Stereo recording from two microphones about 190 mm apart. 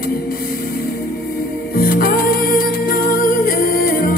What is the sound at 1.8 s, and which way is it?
Music, 50° left (ahead or behind).